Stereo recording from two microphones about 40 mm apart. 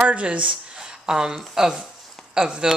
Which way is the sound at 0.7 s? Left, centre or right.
Centre.